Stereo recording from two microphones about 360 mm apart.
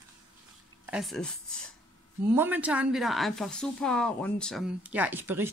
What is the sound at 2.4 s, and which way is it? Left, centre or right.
A woman's voice, centre.